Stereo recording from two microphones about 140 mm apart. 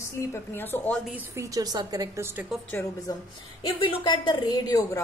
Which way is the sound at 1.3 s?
25° right (ahead or behind).